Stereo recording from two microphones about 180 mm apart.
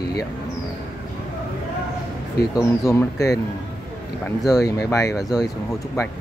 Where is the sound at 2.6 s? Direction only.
15° left (ahead or behind).